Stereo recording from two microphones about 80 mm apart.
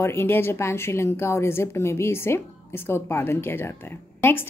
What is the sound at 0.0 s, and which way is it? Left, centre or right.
A woman's voice, left.